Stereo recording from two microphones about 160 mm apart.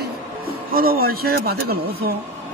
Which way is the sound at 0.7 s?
65° right (ahead or behind).